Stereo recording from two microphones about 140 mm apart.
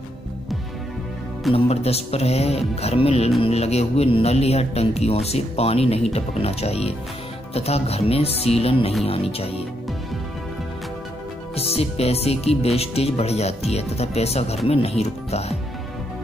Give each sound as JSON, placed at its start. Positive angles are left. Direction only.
{"t": 1.5, "sound": "speech", "side_deg": 45}
{"t": 11.5, "sound": "speech", "side_deg": 45}